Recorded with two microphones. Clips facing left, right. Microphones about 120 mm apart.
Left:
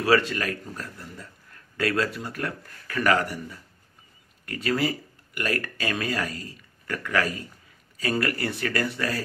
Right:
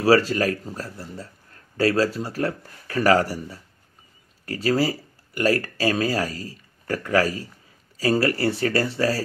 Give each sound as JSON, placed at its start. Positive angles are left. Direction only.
{"t": 0.0, "sound": "speech", "side_deg": -35}